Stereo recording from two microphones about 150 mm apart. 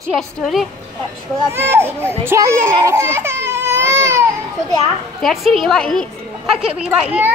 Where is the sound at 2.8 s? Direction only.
20° right (ahead or behind).